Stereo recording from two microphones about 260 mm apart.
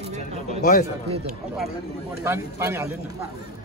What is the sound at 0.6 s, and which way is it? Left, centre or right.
Speech, left.